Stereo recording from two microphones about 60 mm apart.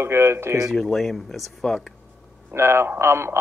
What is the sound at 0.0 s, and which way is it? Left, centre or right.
Speech, right.